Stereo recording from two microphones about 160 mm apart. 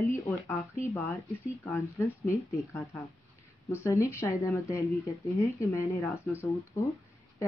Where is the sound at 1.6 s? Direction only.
15° left (ahead or behind).